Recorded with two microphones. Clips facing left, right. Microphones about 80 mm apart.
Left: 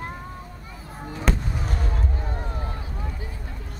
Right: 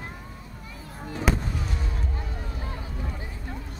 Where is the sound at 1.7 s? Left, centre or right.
Left.